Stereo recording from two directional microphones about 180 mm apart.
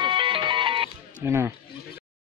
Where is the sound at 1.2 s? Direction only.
15° right (ahead or behind).